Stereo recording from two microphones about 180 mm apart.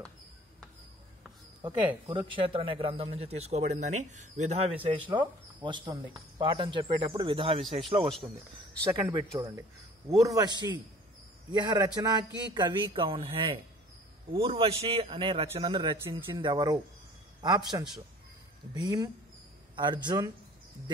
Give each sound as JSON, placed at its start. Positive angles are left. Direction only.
{"t": 2.0, "sound": "a man's voice", "side_deg": -30}
{"t": 5.0, "sound": "speech", "side_deg": -25}
{"t": 8.8, "sound": "speech", "side_deg": -15}
{"t": 16.0, "sound": "speech", "side_deg": -15}
{"t": 16.3, "sound": "speech", "side_deg": -25}